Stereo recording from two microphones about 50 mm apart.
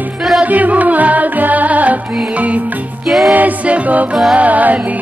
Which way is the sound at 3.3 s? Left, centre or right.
Right.